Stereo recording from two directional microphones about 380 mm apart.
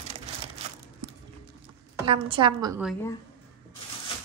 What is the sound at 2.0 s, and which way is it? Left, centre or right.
Speech, centre.